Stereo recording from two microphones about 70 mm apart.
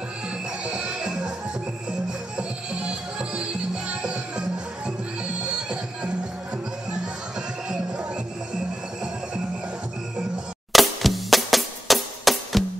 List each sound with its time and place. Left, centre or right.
0.7 s music: centre
3.2 s music: centre
10.7 s music: centre